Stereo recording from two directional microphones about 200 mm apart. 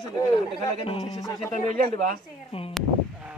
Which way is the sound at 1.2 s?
15° left (ahead or behind).